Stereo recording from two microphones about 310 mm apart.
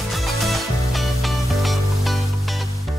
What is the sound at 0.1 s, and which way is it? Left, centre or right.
Music, centre.